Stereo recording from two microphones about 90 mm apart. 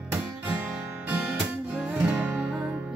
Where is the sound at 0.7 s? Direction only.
15° right (ahead or behind).